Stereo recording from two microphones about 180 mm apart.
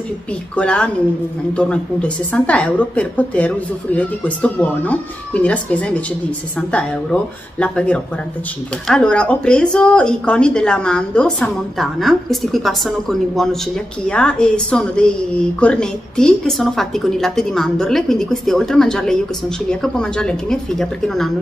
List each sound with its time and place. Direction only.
0.6 s a woman's voice: 5° left (ahead or behind)
14.0 s a woman's voice: 5° left (ahead or behind)